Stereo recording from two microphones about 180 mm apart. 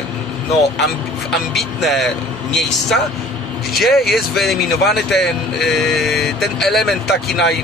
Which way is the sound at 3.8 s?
Centre (ahead or behind).